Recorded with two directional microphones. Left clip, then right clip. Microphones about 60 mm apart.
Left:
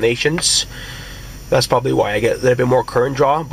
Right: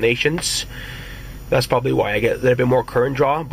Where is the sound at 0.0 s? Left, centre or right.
Left.